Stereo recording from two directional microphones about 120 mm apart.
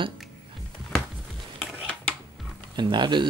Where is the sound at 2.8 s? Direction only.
40° right (ahead or behind).